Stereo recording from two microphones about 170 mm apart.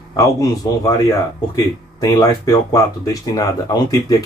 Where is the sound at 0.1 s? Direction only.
20° left (ahead or behind).